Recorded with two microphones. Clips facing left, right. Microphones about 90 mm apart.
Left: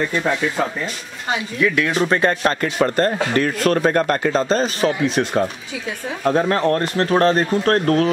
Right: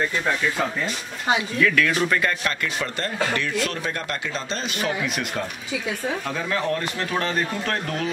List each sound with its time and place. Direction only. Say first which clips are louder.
1.6 s speech: left 5 dB; 25° left (ahead or behind)
6.2 s speech: left 13 dB; 45° left (ahead or behind)